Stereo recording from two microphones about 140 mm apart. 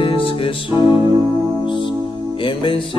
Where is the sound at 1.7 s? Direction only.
35° left (ahead or behind).